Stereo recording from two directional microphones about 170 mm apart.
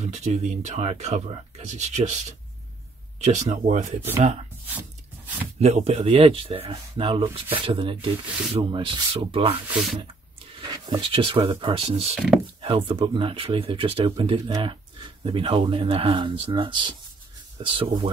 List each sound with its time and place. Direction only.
0.0 s speech: 40° right (ahead or behind)
4.7 s a sound: 10° right (ahead or behind)
5.6 s speech: 35° right (ahead or behind)
9.7 s speech: centre (ahead or behind)
10.4 s speech: 30° right (ahead or behind)